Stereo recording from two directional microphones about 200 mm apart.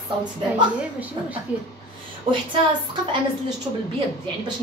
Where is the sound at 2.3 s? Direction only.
25° right (ahead or behind).